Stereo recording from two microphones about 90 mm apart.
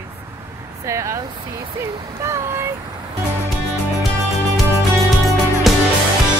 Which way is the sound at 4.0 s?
Centre (ahead or behind).